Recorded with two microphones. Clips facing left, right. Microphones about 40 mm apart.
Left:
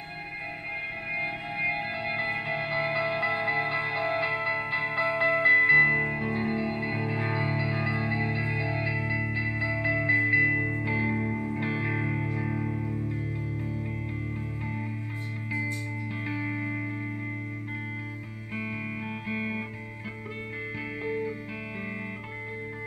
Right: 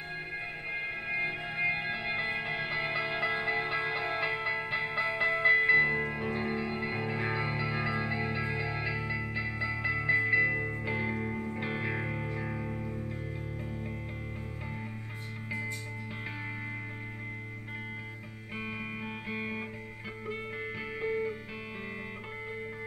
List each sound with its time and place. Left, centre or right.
0.7 s music: centre
6.1 s music: centre
10.5 s music: centre
10.8 s music: centre
18.6 s music: centre